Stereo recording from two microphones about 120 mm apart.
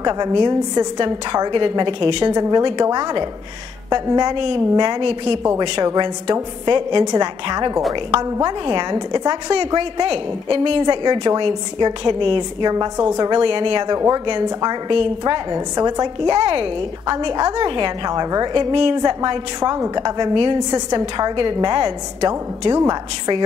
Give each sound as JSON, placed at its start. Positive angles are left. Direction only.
{"t": 0.0, "sound": "a woman's voice", "side_deg": -35}
{"t": 5.0, "sound": "a woman's voice", "side_deg": -55}
{"t": 5.9, "sound": "a woman's voice", "side_deg": -30}
{"t": 13.9, "sound": "a woman's voice", "side_deg": -30}